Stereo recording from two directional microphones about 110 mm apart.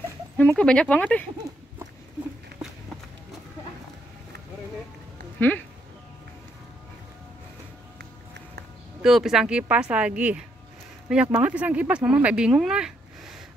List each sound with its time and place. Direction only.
0.4 s speech: 10° left (ahead or behind)
5.4 s speech: 20° left (ahead or behind)
9.0 s speech: 5° right (ahead or behind)